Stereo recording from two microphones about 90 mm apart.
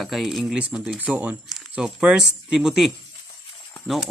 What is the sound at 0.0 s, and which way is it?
Speech, centre (ahead or behind).